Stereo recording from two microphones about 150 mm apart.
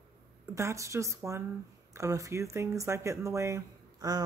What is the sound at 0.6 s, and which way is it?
Speech, 20° right (ahead or behind).